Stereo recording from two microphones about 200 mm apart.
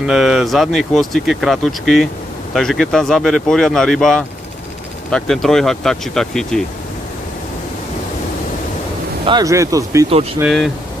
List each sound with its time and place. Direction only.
0.0 s speech: centre (ahead or behind)
9.2 s speech: 20° right (ahead or behind)
10.4 s speech: centre (ahead or behind)